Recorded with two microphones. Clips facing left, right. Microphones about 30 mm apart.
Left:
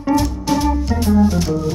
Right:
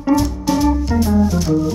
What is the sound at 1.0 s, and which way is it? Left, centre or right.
Organ, centre.